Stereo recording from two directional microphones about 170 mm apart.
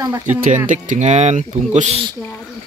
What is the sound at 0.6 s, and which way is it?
Speech, 45° right (ahead or behind).